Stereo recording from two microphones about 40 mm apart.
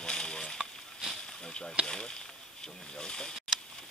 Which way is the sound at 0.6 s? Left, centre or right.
Centre.